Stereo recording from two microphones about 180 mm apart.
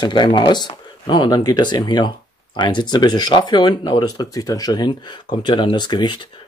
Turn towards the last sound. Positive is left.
turn(degrees=25)  # may be behind; listen again after turning